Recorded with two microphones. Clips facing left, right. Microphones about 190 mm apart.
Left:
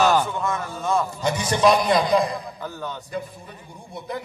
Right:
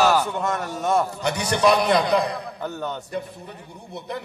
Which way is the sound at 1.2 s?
65° right (ahead or behind).